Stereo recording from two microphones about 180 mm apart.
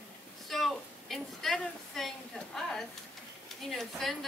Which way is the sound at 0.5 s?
Centre (ahead or behind).